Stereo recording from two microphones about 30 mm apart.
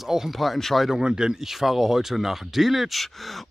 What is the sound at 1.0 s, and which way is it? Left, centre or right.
Speech, right.